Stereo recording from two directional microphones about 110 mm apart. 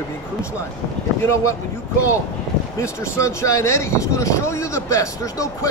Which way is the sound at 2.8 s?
30° left (ahead or behind).